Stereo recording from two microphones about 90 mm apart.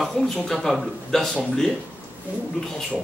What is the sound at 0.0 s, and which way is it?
Speech, centre (ahead or behind).